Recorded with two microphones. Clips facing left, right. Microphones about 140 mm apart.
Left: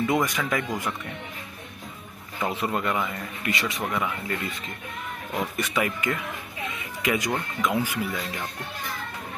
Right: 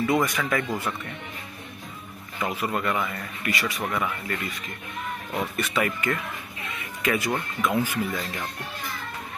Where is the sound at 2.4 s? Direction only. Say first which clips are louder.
Even; 25° left (ahead or behind).